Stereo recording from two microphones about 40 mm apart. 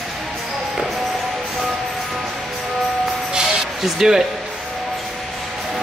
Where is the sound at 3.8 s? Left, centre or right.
Centre.